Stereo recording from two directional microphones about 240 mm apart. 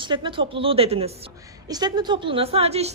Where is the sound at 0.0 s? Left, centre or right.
Right.